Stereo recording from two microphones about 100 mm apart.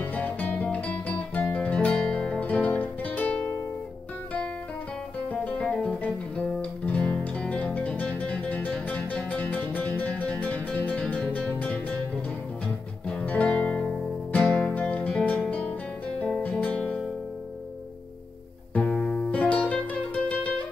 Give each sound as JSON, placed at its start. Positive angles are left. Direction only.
{"t": 0.0, "sound": "music", "side_deg": 15}
{"t": 5.3, "sound": "music", "side_deg": 15}
{"t": 5.7, "sound": "guitar", "side_deg": 10}
{"t": 8.8, "sound": "music", "side_deg": 15}
{"t": 13.1, "sound": "music", "side_deg": 15}
{"t": 16.2, "sound": "guitar", "side_deg": 10}
{"t": 18.8, "sound": "music", "side_deg": 10}